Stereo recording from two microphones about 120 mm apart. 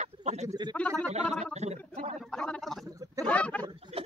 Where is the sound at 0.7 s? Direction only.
10° left (ahead or behind).